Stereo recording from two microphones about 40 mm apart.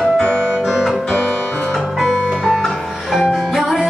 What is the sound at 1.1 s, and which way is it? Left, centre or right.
Music, centre.